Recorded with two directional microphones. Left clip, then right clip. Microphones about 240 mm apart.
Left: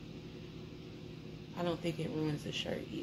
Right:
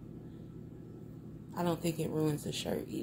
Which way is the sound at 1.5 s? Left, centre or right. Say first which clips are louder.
Right 2 dB; right.